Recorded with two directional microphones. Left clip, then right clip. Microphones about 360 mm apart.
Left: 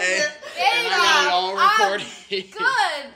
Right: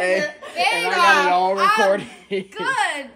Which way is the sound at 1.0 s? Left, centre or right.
Centre.